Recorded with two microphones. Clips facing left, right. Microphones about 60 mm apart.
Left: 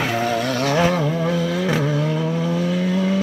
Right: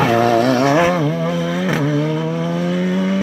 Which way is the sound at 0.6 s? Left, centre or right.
Centre.